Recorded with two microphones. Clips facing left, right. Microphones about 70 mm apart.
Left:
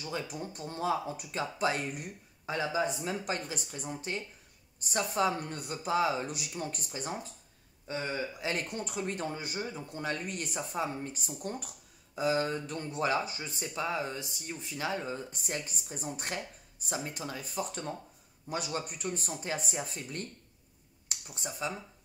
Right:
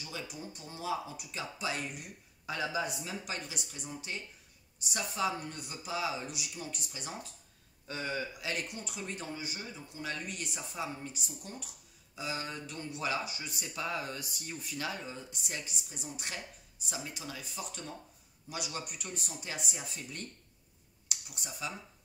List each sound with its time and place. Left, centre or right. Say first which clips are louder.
0.0 s speech: left 6 dB; left
2.5 s speech: left 4 dB; left
15.0 s speech: left 6 dB; left